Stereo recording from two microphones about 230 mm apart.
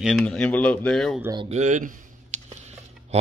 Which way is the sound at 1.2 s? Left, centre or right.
Centre.